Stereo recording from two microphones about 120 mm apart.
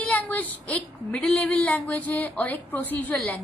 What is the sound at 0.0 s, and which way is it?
Speech, 15° left (ahead or behind).